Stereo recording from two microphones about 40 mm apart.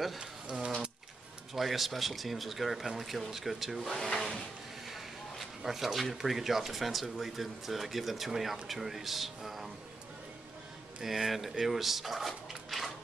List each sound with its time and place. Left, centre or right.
0.2 s speech: right
1.5 s speech: centre
4.1 s a sound: left
4.8 s speech: centre
11.0 s speech: centre